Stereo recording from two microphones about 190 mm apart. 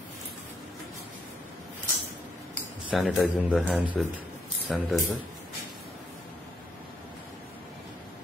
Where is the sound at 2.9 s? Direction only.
5° right (ahead or behind).